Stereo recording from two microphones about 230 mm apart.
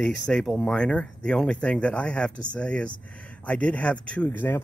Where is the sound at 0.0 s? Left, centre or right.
Centre.